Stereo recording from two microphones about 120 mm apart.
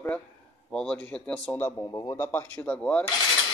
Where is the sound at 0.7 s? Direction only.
5° left (ahead or behind).